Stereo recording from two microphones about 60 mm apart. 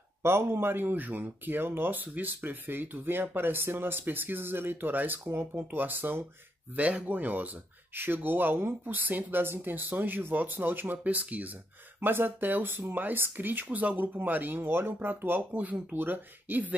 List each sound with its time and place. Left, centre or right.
0.2 s speech: right
6.8 s speech: right